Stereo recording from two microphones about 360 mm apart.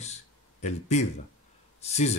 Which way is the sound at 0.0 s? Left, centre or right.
Centre.